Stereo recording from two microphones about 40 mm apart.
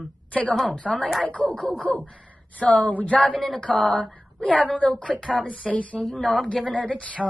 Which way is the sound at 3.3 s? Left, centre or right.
Centre.